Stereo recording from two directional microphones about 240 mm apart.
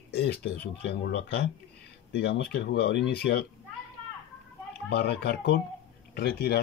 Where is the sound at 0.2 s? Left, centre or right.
Left.